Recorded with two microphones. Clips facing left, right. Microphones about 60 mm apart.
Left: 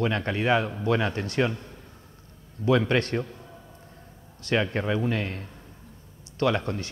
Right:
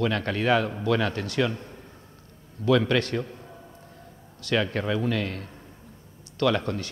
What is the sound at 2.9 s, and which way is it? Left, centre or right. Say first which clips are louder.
Speech: even; left.